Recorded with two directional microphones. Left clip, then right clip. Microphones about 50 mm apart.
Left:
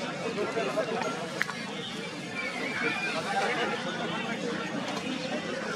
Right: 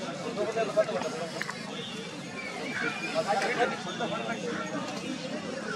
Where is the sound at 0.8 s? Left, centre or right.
Centre.